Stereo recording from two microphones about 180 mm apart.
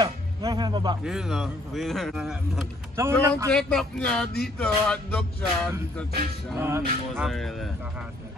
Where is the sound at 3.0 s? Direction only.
15° right (ahead or behind).